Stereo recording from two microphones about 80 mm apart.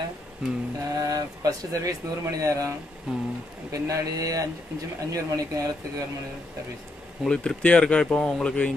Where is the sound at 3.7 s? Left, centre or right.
Right.